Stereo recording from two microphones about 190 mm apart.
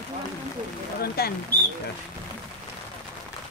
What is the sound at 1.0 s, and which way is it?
Speech, 55° left (ahead or behind).